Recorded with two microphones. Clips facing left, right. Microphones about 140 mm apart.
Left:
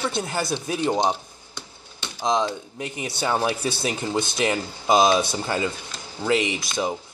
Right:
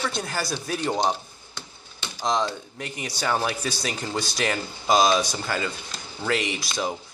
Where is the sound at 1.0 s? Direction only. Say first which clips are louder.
Left 2 dB; 20° left (ahead or behind).